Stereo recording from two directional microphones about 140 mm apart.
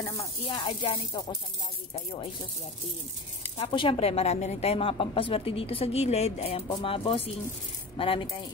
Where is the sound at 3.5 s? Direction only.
40° left (ahead or behind).